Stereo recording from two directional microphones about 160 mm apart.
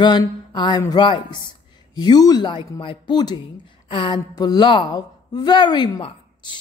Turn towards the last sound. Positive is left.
turn(degrees=30)  # may be behind; listen again after turning